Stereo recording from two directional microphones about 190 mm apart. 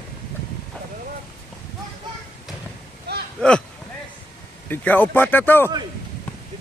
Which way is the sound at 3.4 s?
5° left (ahead or behind).